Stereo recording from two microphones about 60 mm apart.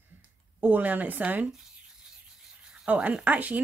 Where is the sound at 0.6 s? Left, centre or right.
Right.